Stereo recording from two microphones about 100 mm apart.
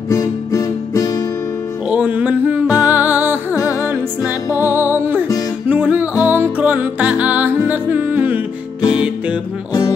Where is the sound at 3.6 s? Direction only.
35° left (ahead or behind).